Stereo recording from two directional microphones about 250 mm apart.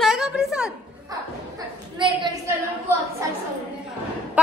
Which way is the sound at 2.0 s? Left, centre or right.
Centre.